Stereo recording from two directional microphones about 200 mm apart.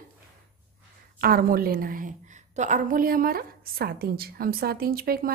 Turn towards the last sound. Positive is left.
turn(degrees=-50)  # may be behind; listen again after turning